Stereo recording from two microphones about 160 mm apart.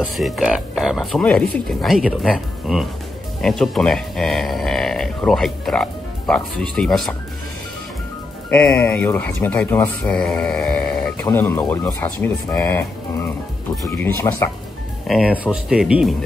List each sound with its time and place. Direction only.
0.0 s speech: centre (ahead or behind)
8.8 s speech: 10° left (ahead or behind)
11.2 s speech: 15° left (ahead or behind)
13.8 s speech: 15° left (ahead or behind)
15.0 s speech: 5° right (ahead or behind)